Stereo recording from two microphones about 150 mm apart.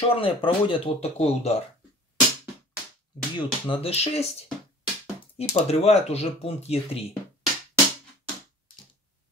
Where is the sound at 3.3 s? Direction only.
40° left (ahead or behind).